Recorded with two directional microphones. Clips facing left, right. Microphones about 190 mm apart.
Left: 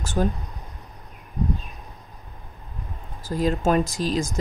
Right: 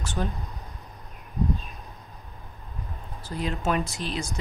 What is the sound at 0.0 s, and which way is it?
Speech, 40° left (ahead or behind).